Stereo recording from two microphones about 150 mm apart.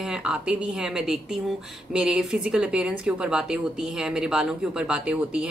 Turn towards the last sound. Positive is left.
turn(degrees=-10)  # may be behind; listen again after turning